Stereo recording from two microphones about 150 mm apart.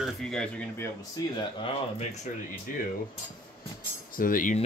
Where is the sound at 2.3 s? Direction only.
60° left (ahead or behind).